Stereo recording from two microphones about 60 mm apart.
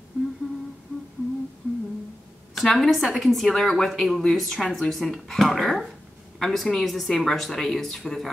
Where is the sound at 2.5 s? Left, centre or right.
Centre.